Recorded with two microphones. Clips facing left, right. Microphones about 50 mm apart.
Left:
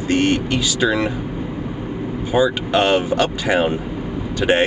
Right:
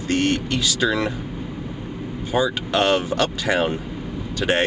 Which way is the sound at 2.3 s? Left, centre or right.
Centre.